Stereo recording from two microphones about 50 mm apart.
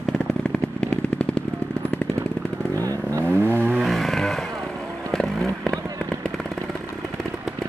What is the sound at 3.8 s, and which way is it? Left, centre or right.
Vehicle, centre.